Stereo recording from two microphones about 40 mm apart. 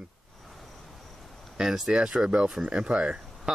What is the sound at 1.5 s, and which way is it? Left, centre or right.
Speech, centre.